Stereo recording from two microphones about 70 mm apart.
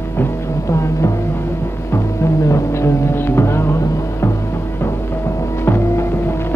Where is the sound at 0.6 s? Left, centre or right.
Left.